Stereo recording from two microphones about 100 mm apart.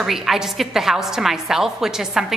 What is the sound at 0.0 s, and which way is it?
A woman's voice, 5° right (ahead or behind).